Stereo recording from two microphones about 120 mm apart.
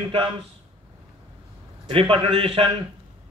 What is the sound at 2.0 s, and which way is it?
Speech, 50° right (ahead or behind).